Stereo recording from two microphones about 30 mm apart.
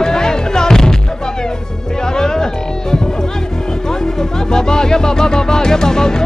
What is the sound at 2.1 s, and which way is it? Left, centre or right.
Music, left.